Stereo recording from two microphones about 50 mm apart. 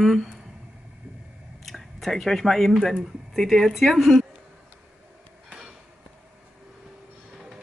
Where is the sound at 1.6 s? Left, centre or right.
Centre.